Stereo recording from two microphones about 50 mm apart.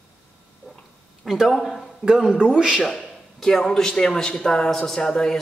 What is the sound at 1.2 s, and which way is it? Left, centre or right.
A man's voice, centre.